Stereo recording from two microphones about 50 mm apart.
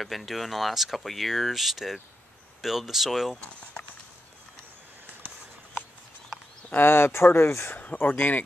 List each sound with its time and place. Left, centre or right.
0.0 s speech: centre
6.7 s speech: left
7.7 s speech: left